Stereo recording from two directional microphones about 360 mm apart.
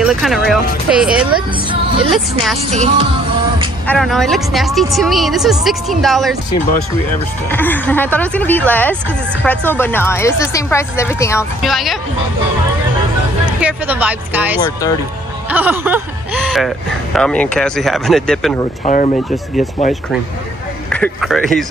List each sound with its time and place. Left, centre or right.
0.0 s speech: centre
1.7 s speech: centre
2.7 s music: centre
3.8 s speech: centre
7.4 s speech: centre
13.6 s speech: centre
18.9 s speech: left
19.3 s speech: centre
20.9 s speech: centre